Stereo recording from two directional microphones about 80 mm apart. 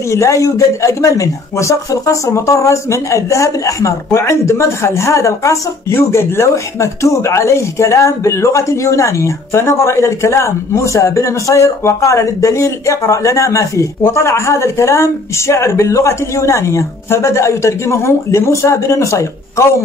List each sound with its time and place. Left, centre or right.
0.1 s speech: left